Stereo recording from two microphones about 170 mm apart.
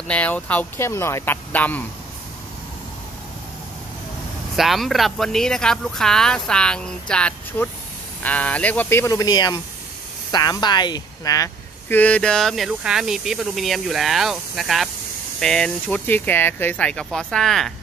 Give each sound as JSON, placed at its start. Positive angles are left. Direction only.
{"t": 0.1, "sound": "speech", "side_deg": 10}
{"t": 4.6, "sound": "speech", "side_deg": 0}
{"t": 12.0, "sound": "speech", "side_deg": 5}